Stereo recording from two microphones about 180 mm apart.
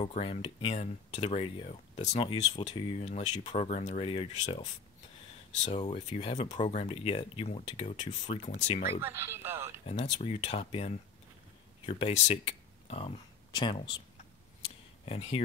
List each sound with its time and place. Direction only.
0.0 s speech: 35° left (ahead or behind)
5.7 s speech: 40° left (ahead or behind)
9.0 s speech: 10° right (ahead or behind)
10.1 s speech: 35° left (ahead or behind)
15.0 s speech: 35° left (ahead or behind)